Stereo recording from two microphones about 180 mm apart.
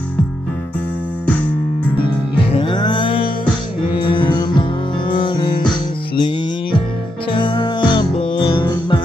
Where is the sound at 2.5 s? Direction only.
25° left (ahead or behind).